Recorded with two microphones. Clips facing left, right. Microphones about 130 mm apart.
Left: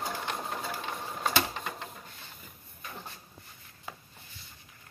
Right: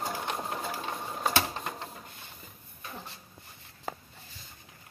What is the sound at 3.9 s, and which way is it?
Writing, 40° right (ahead or behind).